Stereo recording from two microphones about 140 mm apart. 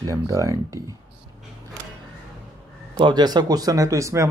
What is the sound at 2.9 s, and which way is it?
Speech, 30° right (ahead or behind).